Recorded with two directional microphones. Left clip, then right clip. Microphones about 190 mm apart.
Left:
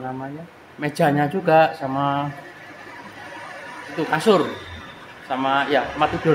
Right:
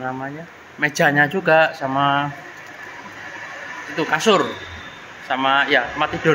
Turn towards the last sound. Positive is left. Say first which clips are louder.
# right 1 dB
turn(degrees=-10)  # may be behind; listen again after turning